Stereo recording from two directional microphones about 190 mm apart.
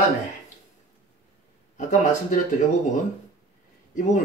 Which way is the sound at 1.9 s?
40° left (ahead or behind).